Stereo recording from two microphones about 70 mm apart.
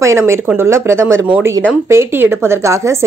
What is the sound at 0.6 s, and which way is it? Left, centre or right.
A woman's voice, right.